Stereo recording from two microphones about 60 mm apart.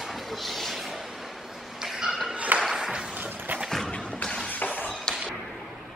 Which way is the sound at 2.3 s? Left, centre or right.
Right.